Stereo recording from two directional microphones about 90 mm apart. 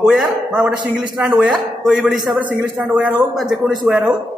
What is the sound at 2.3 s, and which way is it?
A woman's voice, 15° right (ahead or behind).